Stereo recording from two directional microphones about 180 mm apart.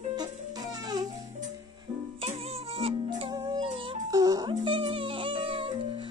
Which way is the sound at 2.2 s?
35° right (ahead or behind).